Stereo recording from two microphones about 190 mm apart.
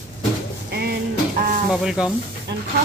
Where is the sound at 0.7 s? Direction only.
55° right (ahead or behind).